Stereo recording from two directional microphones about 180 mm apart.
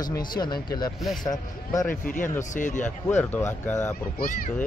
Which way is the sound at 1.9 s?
50° left (ahead or behind).